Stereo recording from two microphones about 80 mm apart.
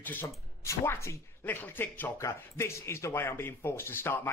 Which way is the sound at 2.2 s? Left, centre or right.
Left.